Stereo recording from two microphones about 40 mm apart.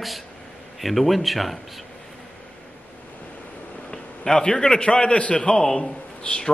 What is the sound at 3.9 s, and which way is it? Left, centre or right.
A man's voice, centre.